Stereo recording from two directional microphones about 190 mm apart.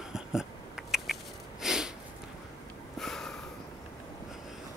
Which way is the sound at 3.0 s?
Centre (ahead or behind).